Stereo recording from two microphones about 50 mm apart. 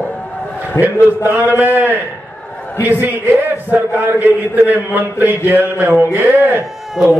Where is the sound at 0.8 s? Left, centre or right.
Left.